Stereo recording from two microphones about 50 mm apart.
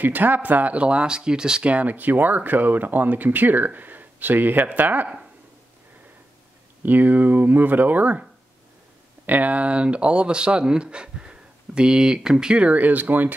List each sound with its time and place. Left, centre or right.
0.0 s speech: right; by 1.7 s centre
1.7 s speech: right
6.8 s speech: right